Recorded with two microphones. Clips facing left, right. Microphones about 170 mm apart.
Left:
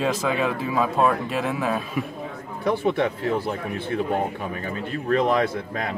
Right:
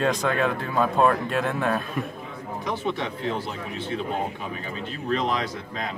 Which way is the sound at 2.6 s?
55° left (ahead or behind).